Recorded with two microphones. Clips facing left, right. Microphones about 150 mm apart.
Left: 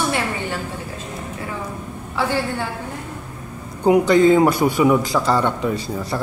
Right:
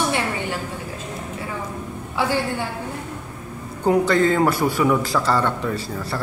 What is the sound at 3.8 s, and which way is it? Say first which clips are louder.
A man's voice: left 4 dB; 15° left (ahead or behind).